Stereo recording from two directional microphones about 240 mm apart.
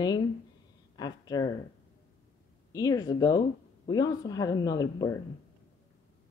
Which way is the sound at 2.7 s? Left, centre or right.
Centre.